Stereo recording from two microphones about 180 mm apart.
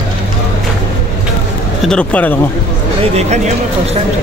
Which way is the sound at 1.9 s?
5° left (ahead or behind).